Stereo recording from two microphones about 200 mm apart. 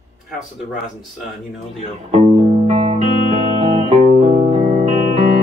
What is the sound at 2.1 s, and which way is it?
Music, 30° right (ahead or behind).